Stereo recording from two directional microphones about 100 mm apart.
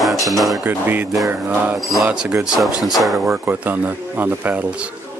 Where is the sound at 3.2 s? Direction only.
20° right (ahead or behind).